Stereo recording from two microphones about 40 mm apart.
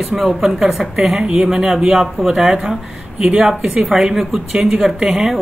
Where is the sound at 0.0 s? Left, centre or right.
Centre.